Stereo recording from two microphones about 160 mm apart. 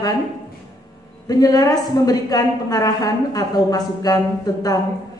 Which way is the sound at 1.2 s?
25° left (ahead or behind).